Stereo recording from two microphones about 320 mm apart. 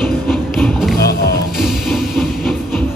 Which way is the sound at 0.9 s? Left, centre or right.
Left.